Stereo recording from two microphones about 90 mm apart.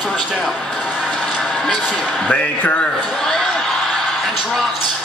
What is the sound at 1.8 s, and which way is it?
Speech, 15° left (ahead or behind).